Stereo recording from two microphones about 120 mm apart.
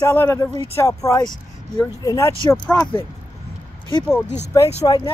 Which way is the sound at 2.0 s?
25° left (ahead or behind).